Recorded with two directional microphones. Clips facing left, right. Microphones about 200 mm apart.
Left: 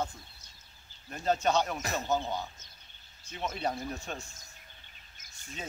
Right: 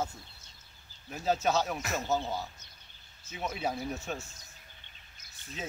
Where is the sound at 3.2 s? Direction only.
5° right (ahead or behind).